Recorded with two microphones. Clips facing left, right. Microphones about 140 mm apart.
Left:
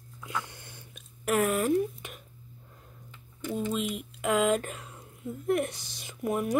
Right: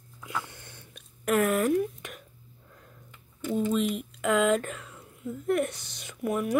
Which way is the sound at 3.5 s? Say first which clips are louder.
Right 4 dB; 15° left (ahead or behind).